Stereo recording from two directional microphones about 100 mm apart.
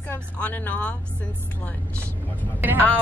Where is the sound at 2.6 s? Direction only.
20° right (ahead or behind).